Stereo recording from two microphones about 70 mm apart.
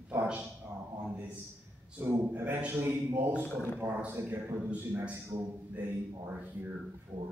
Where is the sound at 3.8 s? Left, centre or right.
Right.